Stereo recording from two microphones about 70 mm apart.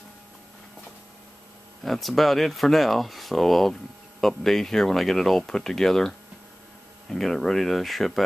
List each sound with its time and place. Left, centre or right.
1.8 s speech: centre